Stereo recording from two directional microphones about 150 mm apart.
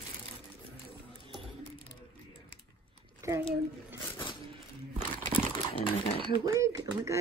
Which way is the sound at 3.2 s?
20° right (ahead or behind).